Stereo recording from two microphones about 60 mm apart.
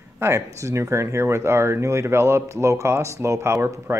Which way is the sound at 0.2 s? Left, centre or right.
Right.